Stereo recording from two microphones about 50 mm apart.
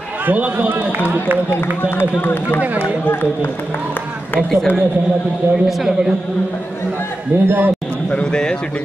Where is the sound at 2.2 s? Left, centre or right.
Left.